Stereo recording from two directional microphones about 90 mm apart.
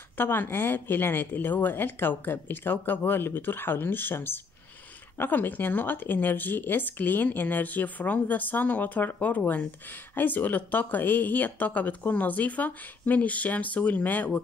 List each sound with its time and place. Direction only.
0.2 s speech: 25° left (ahead or behind)